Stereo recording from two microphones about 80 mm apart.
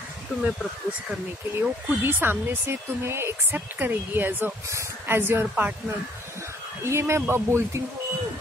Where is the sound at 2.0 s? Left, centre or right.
Right.